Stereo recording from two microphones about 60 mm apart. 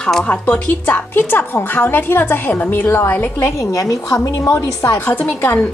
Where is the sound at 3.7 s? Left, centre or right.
Left.